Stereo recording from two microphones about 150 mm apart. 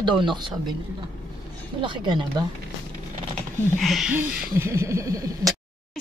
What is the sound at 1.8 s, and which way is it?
Speech, 30° right (ahead or behind).